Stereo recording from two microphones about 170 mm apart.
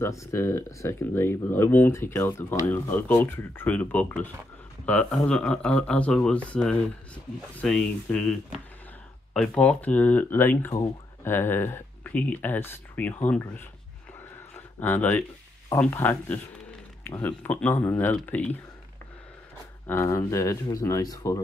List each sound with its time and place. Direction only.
0.0 s speech: 15° left (ahead or behind)
14.8 s speech: 10° left (ahead or behind)
19.9 s speech: 15° left (ahead or behind)